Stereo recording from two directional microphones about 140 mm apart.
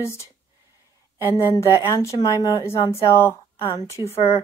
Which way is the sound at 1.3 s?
20° left (ahead or behind).